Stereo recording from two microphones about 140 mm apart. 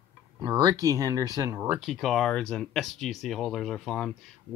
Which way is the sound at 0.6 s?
25° right (ahead or behind).